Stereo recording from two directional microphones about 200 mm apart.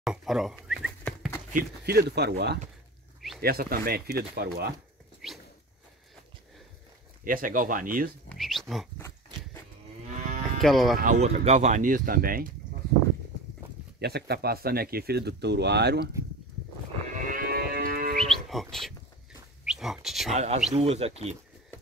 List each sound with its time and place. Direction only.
0.0 s a sound: centre (ahead or behind)
1.5 s speech: 50° right (ahead or behind)
5.2 s a sound: centre (ahead or behind)
7.2 s speech: 45° right (ahead or behind)
8.3 s speech: centre (ahead or behind)
10.6 s speech: centre (ahead or behind)
11.0 s speech: 35° right (ahead or behind)
13.9 s speech: 55° right (ahead or behind)
17.3 s moo: 45° right (ahead or behind)
18.1 s livestock: centre (ahead or behind)
19.6 s speech: centre (ahead or behind)
20.3 s speech: 35° right (ahead or behind)